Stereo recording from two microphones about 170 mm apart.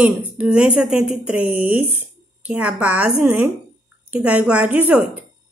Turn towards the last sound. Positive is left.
turn(degrees=-10)  # may be behind; listen again after turning